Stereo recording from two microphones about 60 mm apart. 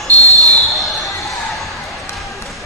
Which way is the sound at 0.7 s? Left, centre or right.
Centre.